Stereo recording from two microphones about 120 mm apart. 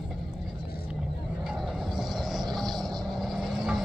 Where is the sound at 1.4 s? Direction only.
5° right (ahead or behind).